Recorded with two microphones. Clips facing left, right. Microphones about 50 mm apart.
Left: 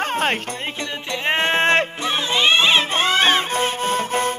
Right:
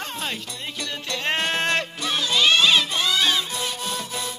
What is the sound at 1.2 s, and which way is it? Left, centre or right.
Music, left.